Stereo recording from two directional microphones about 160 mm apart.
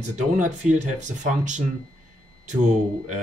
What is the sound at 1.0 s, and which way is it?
Speech, 50° right (ahead or behind).